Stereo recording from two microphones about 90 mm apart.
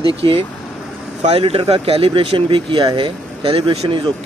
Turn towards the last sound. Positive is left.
turn(degrees=-70)  # may be behind; listen again after turning